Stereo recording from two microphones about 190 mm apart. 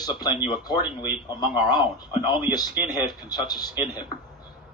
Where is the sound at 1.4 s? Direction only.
20° left (ahead or behind).